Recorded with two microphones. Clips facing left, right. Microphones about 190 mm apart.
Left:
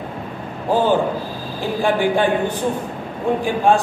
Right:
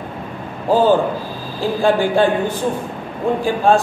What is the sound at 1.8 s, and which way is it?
A man's voice, 15° left (ahead or behind).